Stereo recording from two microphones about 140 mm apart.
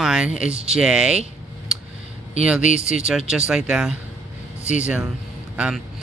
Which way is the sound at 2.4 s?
10° right (ahead or behind).